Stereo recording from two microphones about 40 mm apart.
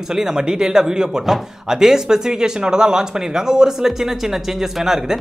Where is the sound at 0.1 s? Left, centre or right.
Centre.